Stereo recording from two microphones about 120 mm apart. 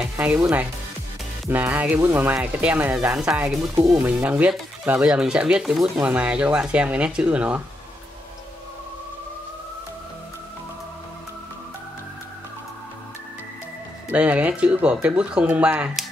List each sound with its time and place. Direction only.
0.0 s speech: 10° right (ahead or behind)
3.7 s speech: 30° right (ahead or behind)
4.0 s speech: 15° right (ahead or behind)
14.1 s speech: 10° right (ahead or behind)